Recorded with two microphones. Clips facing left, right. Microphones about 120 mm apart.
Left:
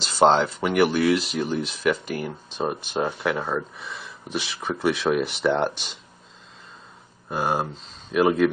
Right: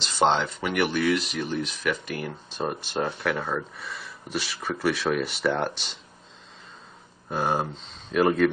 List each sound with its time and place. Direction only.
0.0 s speech: 35° left (ahead or behind)
0.8 s speech: centre (ahead or behind)
1.3 s speech: 35° left (ahead or behind)
1.6 s speech: centre (ahead or behind)
1.9 s speech: 35° left (ahead or behind)
2.2 s speech: 15° left (ahead or behind)
7.2 s speech: 10° left (ahead or behind)